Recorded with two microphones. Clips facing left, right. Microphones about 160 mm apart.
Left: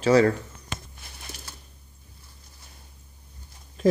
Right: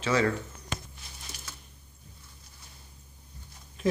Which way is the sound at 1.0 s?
55° left (ahead or behind).